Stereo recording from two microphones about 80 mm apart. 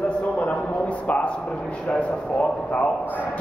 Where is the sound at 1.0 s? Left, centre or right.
Centre.